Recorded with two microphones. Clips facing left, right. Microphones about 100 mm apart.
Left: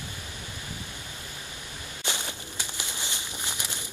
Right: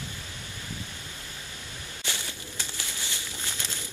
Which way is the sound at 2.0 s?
20° left (ahead or behind).